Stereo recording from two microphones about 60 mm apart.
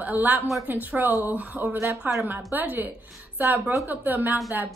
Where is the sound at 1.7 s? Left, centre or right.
Right.